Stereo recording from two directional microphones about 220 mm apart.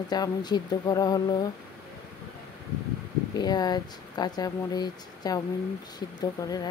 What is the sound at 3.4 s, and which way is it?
Speech, 20° left (ahead or behind).